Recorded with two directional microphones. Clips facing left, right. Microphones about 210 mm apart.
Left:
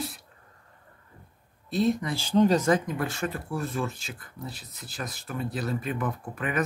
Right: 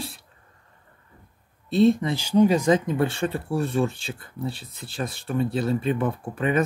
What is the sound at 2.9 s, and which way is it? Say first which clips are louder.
Speech: right 6 dB; 30° right (ahead or behind).